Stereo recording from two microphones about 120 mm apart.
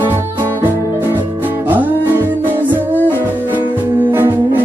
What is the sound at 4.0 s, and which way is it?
Music, 20° right (ahead or behind).